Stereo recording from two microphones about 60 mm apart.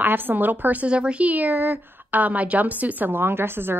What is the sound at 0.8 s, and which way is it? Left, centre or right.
A woman's voice, centre.